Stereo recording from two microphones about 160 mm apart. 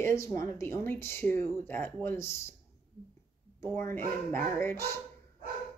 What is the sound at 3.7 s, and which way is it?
Speech, 15° left (ahead or behind).